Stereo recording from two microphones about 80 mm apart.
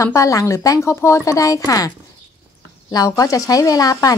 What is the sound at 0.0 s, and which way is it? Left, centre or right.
Speech, left.